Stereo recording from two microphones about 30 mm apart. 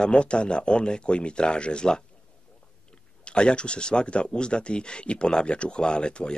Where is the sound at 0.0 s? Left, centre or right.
Left.